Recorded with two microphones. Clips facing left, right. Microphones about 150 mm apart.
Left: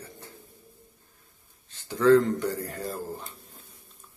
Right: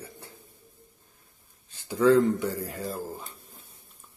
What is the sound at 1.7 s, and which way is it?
Speech, 10° right (ahead or behind).